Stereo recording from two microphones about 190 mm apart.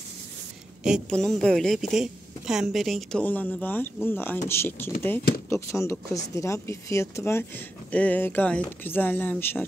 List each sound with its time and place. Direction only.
0.8 s a woman's voice: centre (ahead or behind)